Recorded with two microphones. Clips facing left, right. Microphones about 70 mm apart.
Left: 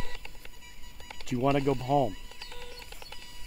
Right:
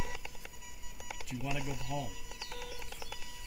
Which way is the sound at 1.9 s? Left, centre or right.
Left.